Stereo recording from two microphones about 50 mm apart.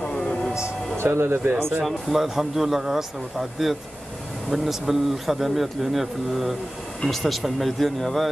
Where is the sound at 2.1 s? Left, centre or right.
Centre.